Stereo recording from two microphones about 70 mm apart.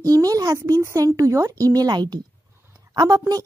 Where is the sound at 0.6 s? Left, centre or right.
Right.